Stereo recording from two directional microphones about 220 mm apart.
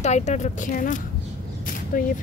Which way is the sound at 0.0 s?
30° left (ahead or behind).